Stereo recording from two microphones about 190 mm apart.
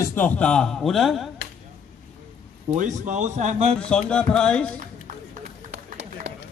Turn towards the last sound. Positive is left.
turn(degrees=5)  # may be behind; listen again after turning